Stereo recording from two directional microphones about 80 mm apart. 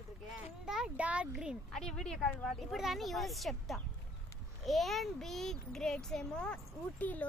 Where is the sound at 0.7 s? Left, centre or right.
Centre.